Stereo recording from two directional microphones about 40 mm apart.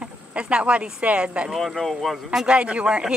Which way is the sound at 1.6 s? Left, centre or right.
Centre.